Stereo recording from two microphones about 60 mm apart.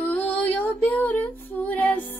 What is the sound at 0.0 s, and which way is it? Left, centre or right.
Music, left.